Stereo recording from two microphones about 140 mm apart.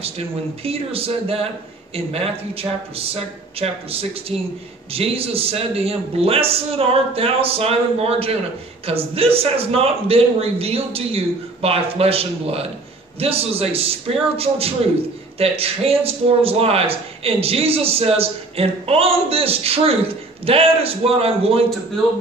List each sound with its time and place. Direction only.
0.7 s a man's voice: 45° right (ahead or behind)